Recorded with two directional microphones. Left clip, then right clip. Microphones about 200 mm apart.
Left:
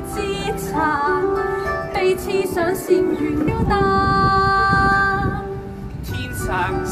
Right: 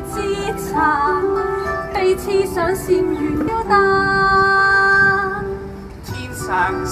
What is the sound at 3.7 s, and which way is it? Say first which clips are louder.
Child singing: right 3 dB; 30° left (ahead or behind).